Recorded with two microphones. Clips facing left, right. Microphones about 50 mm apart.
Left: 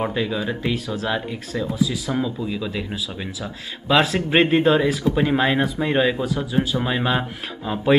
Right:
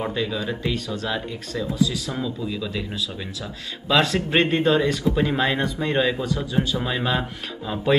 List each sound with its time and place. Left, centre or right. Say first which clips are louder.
0.0 s speech: left 2 dB; centre